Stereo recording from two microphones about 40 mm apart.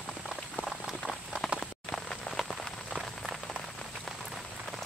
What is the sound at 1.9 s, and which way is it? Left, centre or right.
Rain on surface, centre.